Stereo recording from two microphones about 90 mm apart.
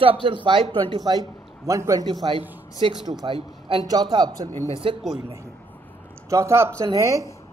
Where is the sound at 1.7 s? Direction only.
40° right (ahead or behind).